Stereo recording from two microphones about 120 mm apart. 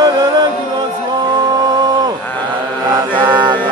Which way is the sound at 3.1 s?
35° right (ahead or behind).